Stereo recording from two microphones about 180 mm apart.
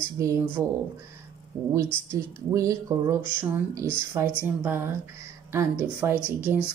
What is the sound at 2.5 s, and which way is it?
A woman's voice, 20° right (ahead or behind).